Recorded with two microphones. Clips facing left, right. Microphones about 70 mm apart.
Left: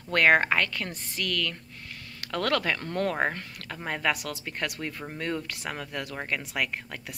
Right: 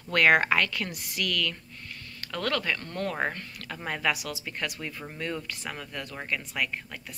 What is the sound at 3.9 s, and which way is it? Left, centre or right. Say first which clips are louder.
Speech: left 1 dB; left.